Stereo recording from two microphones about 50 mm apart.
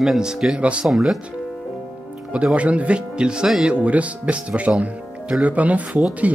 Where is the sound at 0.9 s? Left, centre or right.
Centre.